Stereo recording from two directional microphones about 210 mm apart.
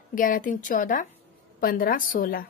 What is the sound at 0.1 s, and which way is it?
A woman's voice, 40° left (ahead or behind).